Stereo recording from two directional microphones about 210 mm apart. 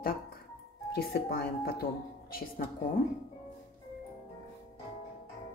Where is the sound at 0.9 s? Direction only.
50° left (ahead or behind).